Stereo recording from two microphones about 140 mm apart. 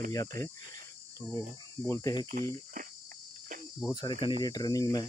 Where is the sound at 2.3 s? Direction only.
75° right (ahead or behind).